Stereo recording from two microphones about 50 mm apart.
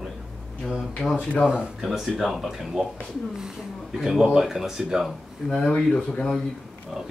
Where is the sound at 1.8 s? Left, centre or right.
Centre.